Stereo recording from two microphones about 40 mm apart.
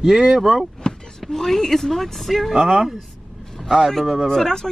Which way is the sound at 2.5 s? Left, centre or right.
Centre.